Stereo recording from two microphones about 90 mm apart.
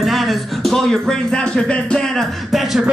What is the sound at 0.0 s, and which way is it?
Speech, centre (ahead or behind).